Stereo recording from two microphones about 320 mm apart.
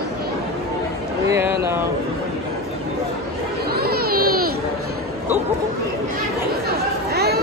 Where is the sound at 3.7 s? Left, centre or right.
Right.